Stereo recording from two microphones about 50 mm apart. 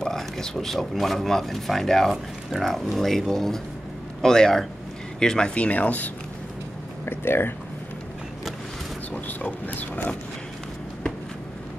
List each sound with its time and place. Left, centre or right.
0.0 s speech: centre; by 6.1 s left
7.1 s speech: left
9.1 s speech: left